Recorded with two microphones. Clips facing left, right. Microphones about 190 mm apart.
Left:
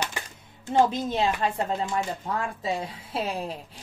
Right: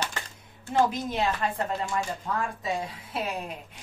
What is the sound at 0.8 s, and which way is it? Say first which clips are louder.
Speech: left 2 dB; 25° left (ahead or behind).